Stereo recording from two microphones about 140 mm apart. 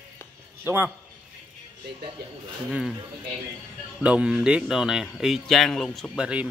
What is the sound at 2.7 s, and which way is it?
Speech, centre (ahead or behind).